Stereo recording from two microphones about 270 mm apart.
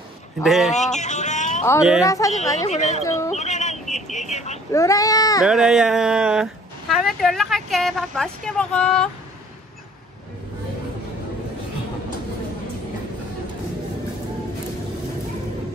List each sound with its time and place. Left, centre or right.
0.4 s speech: centre
0.7 s a sound: left
2.0 s speech: centre
2.7 s speech: left
3.3 s a sound: left
4.7 s speech: centre
5.4 s speech: centre